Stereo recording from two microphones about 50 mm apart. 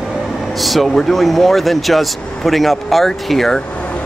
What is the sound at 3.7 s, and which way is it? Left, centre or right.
Air conditioning, left.